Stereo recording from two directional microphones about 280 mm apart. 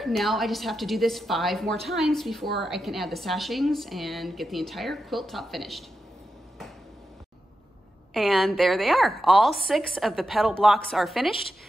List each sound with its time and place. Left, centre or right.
0.0 s a woman's voice: centre
8.1 s a woman's voice: centre